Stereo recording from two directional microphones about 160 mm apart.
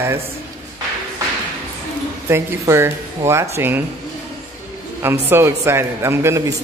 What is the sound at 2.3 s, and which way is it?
A man's voice, 15° right (ahead or behind).